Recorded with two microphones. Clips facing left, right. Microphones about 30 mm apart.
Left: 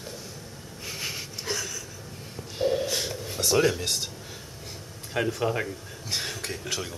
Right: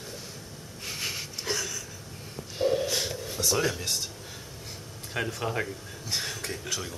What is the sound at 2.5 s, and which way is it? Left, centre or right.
Snort, centre.